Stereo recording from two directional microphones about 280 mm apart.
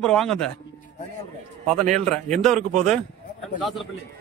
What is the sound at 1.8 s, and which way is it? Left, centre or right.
Speech, centre.